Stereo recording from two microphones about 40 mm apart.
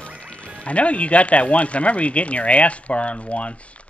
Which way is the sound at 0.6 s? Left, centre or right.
Left.